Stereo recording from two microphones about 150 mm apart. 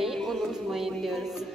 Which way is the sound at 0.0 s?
Centre (ahead or behind).